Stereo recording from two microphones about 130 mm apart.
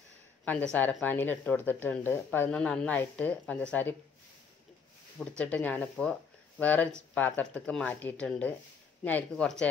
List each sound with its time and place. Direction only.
1.0 s speech: 15° left (ahead or behind)
5.4 s speech: 10° left (ahead or behind)